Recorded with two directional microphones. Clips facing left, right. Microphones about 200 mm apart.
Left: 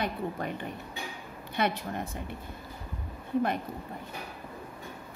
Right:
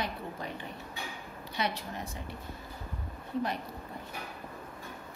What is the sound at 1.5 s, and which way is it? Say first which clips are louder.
Speech: left 5 dB; 55° left (ahead or behind).